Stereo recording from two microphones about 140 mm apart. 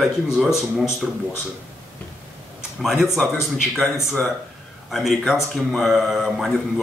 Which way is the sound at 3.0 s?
Centre (ahead or behind).